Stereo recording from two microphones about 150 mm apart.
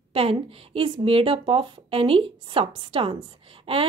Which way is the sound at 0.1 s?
40° right (ahead or behind).